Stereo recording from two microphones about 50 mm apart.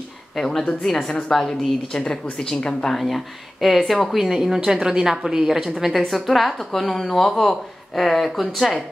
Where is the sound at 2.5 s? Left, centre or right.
Centre.